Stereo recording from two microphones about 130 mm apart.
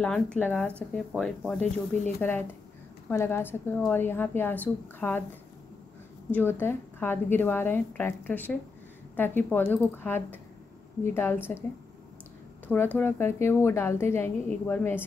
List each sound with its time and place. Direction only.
0.0 s a woman's voice: 10° left (ahead or behind)
6.3 s speech: 15° left (ahead or behind)
12.6 s speech: 10° left (ahead or behind)